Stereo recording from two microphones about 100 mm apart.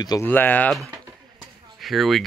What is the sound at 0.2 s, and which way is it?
Speech, 20° left (ahead or behind).